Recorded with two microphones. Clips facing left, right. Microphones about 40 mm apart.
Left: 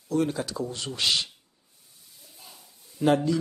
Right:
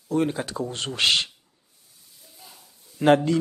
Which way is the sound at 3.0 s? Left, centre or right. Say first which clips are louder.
Right 5 dB; right.